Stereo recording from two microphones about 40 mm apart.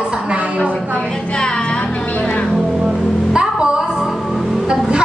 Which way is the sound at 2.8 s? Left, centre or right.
Right.